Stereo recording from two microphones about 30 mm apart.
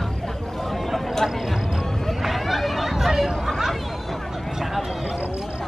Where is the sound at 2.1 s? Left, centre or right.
Centre.